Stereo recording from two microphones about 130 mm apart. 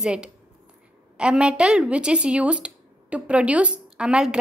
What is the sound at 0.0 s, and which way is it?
Speech, 5° right (ahead or behind).